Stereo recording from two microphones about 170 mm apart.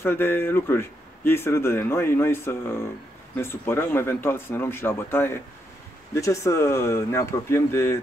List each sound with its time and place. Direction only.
0.0 s speech: 10° left (ahead or behind)